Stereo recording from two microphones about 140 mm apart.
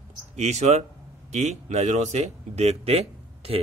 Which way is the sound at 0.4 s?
50° right (ahead or behind).